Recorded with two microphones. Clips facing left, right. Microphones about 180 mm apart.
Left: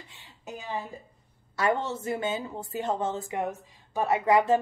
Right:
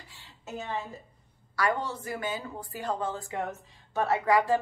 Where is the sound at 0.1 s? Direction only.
15° left (ahead or behind).